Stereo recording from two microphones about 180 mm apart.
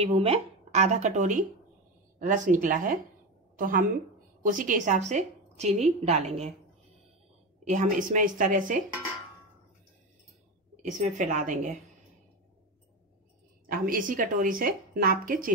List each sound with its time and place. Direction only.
0.0 s a woman's voice: 35° right (ahead or behind)
7.6 s a woman's voice: 45° right (ahead or behind)
10.8 s a woman's voice: 45° right (ahead or behind)
13.7 s a woman's voice: 50° right (ahead or behind)